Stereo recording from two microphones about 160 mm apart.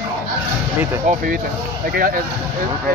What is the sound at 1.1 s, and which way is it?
Speech, 65° right (ahead or behind).